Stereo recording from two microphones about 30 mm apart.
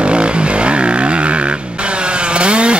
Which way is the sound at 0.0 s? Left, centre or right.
Right.